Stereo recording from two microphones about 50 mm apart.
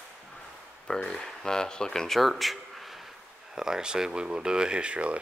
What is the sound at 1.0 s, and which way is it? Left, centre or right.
Speech, centre.